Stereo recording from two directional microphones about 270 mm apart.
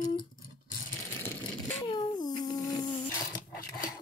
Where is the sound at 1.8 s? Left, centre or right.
Centre.